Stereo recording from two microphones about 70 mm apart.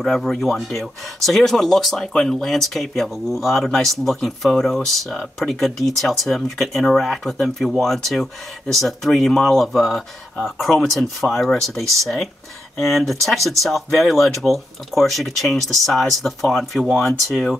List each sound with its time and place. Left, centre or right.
0.0 s speech: centre